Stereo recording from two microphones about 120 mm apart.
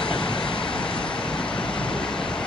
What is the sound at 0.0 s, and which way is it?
Vehicle, 45° left (ahead or behind).